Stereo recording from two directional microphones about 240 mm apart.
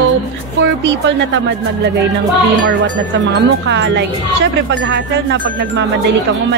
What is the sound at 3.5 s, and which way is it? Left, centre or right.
A woman's voice, right.